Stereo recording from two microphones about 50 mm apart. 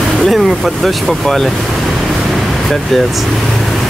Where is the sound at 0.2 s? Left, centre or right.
Centre.